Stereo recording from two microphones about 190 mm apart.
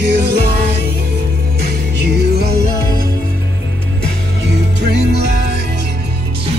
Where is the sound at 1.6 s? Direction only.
60° right (ahead or behind).